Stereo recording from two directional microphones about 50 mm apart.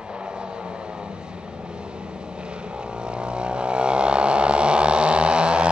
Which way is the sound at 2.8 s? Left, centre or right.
Centre.